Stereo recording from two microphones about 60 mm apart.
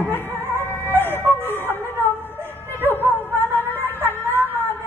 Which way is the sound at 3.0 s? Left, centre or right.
Right.